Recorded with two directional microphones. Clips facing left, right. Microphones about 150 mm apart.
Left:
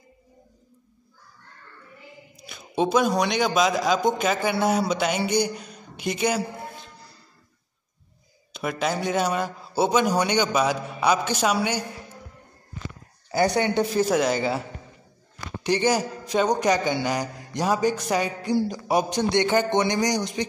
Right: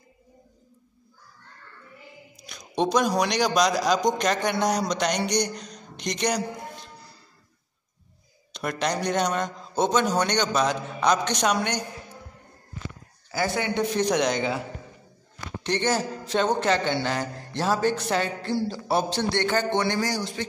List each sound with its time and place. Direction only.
2.4 s a man's voice: 5° left (ahead or behind)
8.5 s a man's voice: 5° left (ahead or behind)
13.3 s speech: 25° left (ahead or behind)
13.9 s speech: 5° left (ahead or behind)
15.6 s a man's voice: 10° left (ahead or behind)